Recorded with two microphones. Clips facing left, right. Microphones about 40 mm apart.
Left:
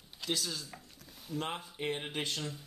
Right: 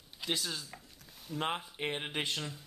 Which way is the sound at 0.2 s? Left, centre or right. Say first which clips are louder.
Even; centre.